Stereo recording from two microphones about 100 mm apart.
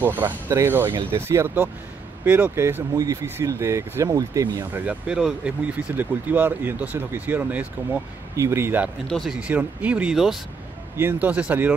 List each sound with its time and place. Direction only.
0.0 s speech: 20° right (ahead or behind)
4.7 s speech: 10° right (ahead or behind)
9.1 s speech: centre (ahead or behind)
9.4 s speech: 15° right (ahead or behind)
10.1 s speech: 5° right (ahead or behind)
11.0 s speech: 20° right (ahead or behind)